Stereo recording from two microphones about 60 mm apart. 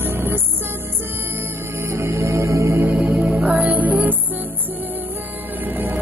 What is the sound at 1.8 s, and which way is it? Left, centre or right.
Music, right.